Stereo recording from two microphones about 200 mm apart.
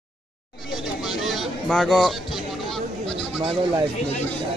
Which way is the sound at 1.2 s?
Centre (ahead or behind).